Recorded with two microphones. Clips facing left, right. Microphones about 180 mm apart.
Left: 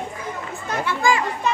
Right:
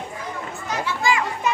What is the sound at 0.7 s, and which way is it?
Children playing, 55° left (ahead or behind).